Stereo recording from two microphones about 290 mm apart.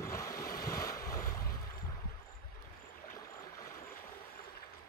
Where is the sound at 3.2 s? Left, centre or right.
Centre.